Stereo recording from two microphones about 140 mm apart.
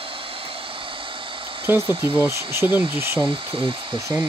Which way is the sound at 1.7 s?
15° right (ahead or behind).